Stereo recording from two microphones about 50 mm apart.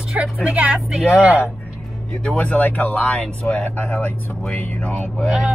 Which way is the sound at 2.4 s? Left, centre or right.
Left.